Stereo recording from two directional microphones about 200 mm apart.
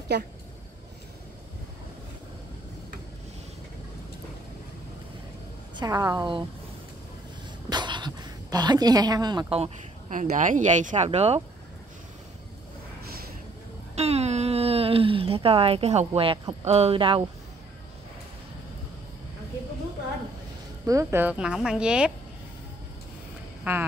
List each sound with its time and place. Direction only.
5.8 s a woman's voice: 20° right (ahead or behind)
7.7 s speech: 20° right (ahead or behind)
13.9 s a sound: 30° right (ahead or behind)
16.6 s a woman's voice: 30° right (ahead or behind)
20.8 s speech: 15° right (ahead or behind)
23.6 s speech: 10° right (ahead or behind)